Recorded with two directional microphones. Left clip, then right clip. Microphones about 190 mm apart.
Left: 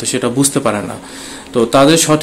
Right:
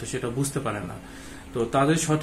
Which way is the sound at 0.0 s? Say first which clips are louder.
Left 14 dB; 55° left (ahead or behind).